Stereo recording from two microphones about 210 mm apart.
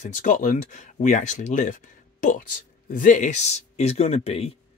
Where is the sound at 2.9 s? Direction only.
40° left (ahead or behind).